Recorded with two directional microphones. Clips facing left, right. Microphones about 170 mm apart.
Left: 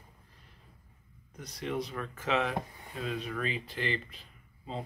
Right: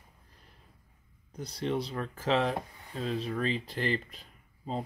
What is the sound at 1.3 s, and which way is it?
Speech, 30° right (ahead or behind).